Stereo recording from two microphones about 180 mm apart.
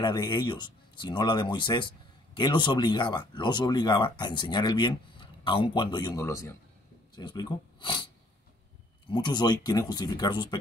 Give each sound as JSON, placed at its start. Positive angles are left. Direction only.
{"t": 0.0, "sound": "speech", "side_deg": 25}
{"t": 9.1, "sound": "speech", "side_deg": 25}